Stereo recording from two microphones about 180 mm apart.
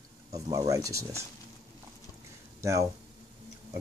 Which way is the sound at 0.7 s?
15° right (ahead or behind).